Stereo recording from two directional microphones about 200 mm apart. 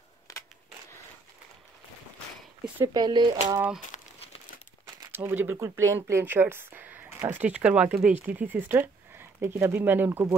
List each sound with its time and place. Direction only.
0.3 s a sound: 15° left (ahead or behind)
2.9 s speech: 20° right (ahead or behind)
3.9 s crumpling: 30° left (ahead or behind)
5.0 s speech: 10° right (ahead or behind)